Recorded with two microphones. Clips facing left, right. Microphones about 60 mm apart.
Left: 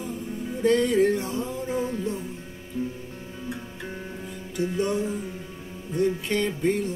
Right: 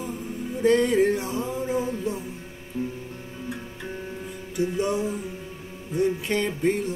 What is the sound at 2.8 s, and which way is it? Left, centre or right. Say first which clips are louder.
Music: even; right.